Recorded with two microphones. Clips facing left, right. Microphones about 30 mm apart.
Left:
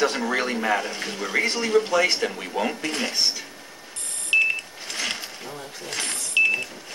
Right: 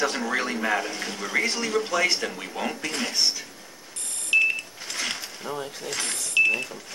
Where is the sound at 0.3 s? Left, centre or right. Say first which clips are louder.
Left 2 dB; centre.